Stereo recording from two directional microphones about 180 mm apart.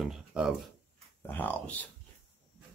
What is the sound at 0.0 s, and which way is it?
Speech, 5° right (ahead or behind).